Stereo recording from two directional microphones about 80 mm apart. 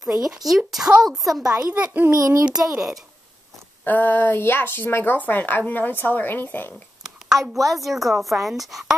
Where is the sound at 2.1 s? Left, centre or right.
Right.